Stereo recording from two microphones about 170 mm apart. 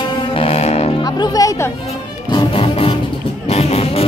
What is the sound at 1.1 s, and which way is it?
Music, 25° left (ahead or behind).